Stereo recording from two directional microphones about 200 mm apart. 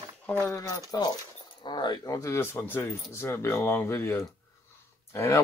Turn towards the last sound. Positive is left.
turn(degrees=15)  # may be behind; listen again after turning